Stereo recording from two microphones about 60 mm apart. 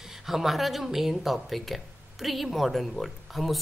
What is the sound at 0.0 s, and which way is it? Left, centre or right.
Speech, centre.